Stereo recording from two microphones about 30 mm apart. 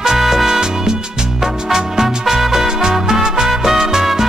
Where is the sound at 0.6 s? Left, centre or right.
Right.